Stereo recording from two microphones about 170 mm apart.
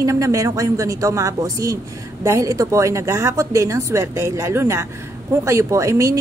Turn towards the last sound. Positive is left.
turn(degrees=-20)  # may be behind; listen again after turning